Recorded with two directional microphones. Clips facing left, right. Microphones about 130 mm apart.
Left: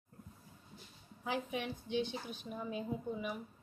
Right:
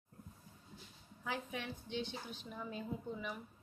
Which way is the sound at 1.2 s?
15° left (ahead or behind).